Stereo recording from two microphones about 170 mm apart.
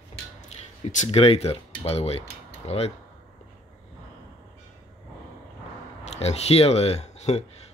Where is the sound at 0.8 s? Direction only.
40° left (ahead or behind).